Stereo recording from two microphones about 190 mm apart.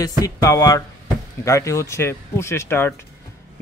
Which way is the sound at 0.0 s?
20° left (ahead or behind).